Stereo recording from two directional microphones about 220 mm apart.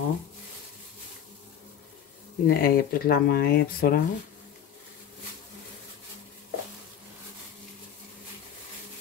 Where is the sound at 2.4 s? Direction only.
45° left (ahead or behind).